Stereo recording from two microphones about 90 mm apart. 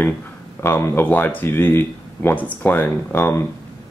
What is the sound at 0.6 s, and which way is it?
Speech, 25° left (ahead or behind).